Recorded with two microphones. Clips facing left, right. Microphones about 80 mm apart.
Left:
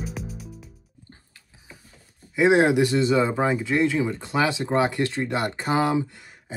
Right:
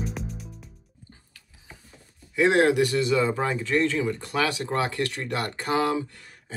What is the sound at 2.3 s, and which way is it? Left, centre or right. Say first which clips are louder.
Speech: left 2 dB; centre.